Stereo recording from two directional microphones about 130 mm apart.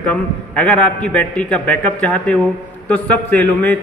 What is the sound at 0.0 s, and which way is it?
A man's voice, 10° left (ahead or behind).